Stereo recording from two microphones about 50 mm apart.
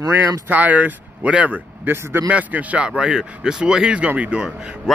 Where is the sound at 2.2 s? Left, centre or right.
Right.